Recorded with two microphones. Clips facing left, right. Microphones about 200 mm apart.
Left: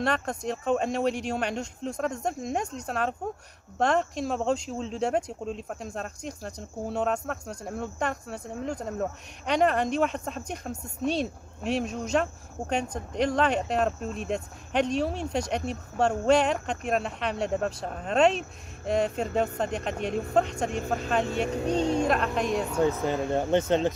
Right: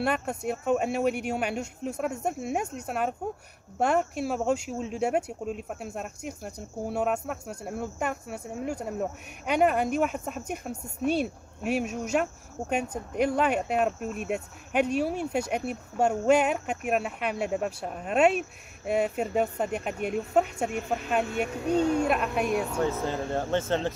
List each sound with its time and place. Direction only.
0.0 s speech: 10° right (ahead or behind)
21.7 s speech: 10° right (ahead or behind)
23.0 s speech: 15° left (ahead or behind)